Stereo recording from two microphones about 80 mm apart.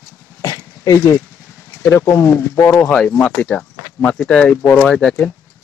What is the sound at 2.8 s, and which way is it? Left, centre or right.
Speech, centre.